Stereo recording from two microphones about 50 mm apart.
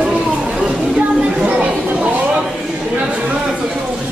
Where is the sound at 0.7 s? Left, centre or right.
Right.